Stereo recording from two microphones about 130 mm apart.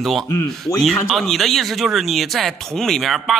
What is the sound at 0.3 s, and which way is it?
Speech, 15° left (ahead or behind).